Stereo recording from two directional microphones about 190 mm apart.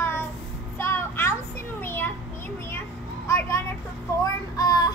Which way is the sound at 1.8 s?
10° left (ahead or behind).